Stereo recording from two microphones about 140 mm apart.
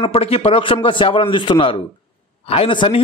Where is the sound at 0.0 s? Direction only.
45° left (ahead or behind).